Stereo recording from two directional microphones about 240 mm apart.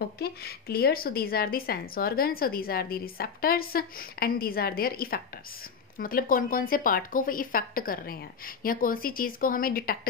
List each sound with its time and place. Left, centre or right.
0.2 s speech: left